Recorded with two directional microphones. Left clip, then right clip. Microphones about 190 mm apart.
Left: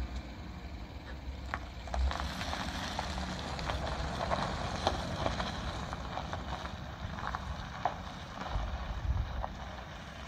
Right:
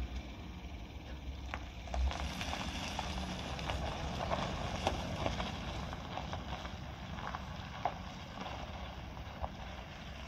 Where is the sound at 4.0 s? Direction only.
10° left (ahead or behind).